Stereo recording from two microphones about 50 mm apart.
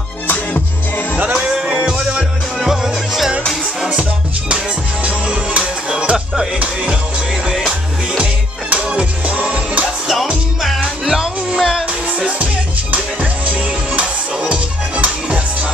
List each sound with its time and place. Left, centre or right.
0.3 s music: left
1.1 s music: right
2.6 s music: centre
5.0 s music: centre
8.2 s music: right
10.8 s music: centre
12.2 s music: right